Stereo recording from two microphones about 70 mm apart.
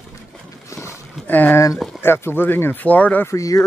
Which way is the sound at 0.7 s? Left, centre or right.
Left.